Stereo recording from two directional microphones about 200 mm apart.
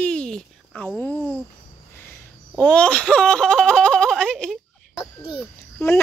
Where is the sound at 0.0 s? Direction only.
5° left (ahead or behind).